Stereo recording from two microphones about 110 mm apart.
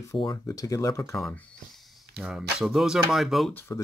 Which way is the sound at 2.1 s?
5° right (ahead or behind).